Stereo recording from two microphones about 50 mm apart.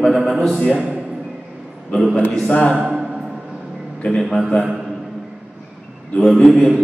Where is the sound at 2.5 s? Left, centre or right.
Left.